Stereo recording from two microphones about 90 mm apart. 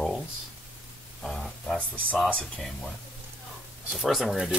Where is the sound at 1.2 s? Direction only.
Centre (ahead or behind).